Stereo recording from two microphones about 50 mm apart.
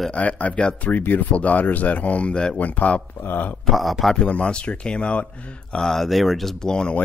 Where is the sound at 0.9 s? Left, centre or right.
Left; by 2.5 s centre.